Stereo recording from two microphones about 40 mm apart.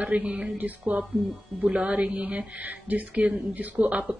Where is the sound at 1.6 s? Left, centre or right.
Right.